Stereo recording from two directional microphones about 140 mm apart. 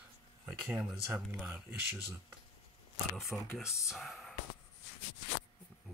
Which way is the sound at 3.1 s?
Centre (ahead or behind).